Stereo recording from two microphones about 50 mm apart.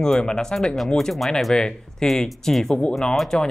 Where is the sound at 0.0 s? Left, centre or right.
Centre.